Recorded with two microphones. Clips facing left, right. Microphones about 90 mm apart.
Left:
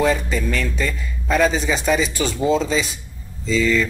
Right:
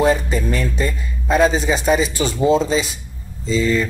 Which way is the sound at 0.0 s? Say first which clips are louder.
Right 2 dB; 30° right (ahead or behind).